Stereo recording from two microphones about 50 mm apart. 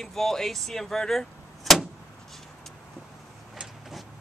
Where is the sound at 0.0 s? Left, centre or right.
Centre.